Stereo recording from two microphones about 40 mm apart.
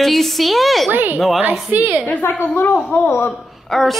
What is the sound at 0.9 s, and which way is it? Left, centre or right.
Speech, right.